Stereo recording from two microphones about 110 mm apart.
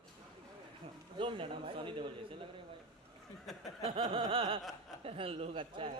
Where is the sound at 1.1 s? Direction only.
50° right (ahead or behind).